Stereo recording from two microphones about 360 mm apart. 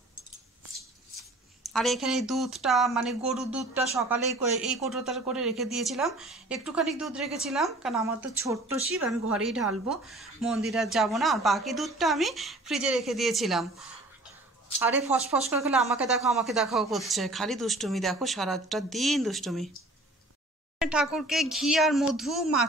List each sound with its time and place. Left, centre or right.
1.6 s speech: centre
15.1 s speech: centre
15.7 s speech: centre
20.8 s speech: centre